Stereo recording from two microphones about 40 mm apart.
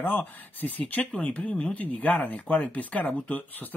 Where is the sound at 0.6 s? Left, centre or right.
Left.